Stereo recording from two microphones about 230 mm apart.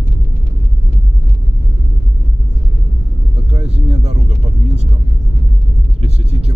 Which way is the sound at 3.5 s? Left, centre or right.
Right.